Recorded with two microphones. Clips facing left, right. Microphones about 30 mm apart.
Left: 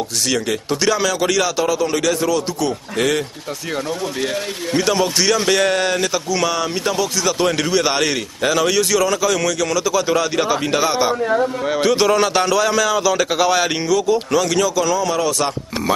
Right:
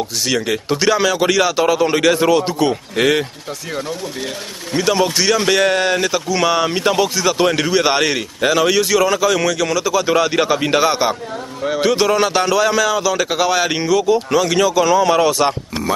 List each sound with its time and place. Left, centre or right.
0.3 s speech: centre; by 2.7 s right
3.0 s a man's voice: right
4.7 s a man's voice: centre
11.6 s a man's voice: centre; by 15.5 s right